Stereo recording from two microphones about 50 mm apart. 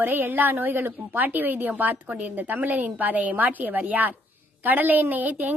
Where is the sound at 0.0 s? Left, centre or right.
Right.